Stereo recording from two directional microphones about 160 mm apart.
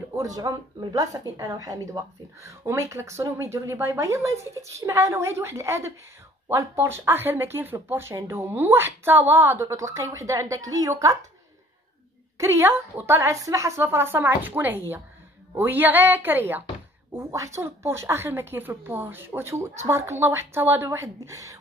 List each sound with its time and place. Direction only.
0.1 s speech: 20° right (ahead or behind)
12.4 s speech: 15° right (ahead or behind)